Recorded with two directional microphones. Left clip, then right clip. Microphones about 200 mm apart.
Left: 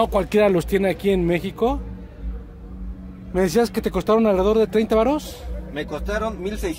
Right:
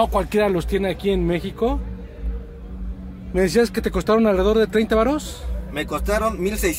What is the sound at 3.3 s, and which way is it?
Speech, 15° left (ahead or behind).